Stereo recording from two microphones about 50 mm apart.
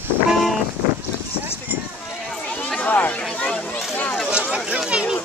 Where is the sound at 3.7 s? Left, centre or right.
Left.